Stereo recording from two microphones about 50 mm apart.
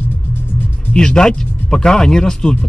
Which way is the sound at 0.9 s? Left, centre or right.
Centre.